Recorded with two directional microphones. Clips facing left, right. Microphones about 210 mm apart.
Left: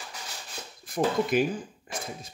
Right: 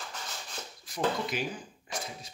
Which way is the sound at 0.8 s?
55° left (ahead or behind).